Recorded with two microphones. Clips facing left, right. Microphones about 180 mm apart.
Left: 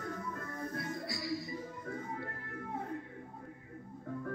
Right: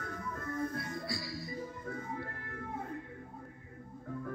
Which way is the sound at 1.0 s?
20° left (ahead or behind).